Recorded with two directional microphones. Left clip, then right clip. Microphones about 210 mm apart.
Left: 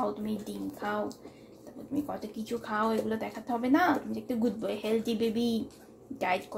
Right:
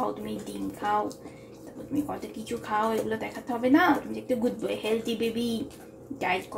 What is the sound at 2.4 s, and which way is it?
Speech, 35° left (ahead or behind).